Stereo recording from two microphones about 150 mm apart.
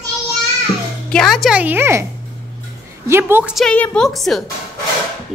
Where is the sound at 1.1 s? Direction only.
Centre (ahead or behind).